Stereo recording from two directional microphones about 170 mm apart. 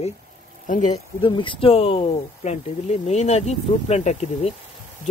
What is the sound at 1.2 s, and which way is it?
Speech, 30° left (ahead or behind).